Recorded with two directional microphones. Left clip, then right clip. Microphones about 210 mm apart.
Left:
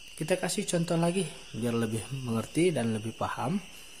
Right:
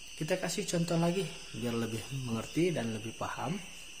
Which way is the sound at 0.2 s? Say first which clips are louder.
Left 4 dB; 25° left (ahead or behind).